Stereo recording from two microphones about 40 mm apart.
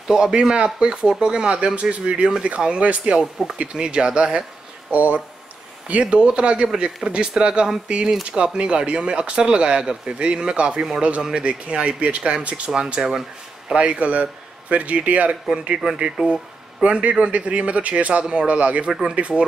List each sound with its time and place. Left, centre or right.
0.1 s speech: centre; by 3.2 s right
3.4 s speech: centre
3.7 s speech: right
4.9 s speech: right
5.9 s speech: right
12.2 s speech: centre
12.4 s speech: right
12.9 s speech: centre
13.7 s speech: right
15.4 s speech: right
16.8 s speech: right